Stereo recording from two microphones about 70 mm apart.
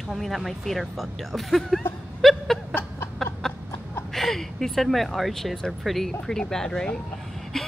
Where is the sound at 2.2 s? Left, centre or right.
Centre.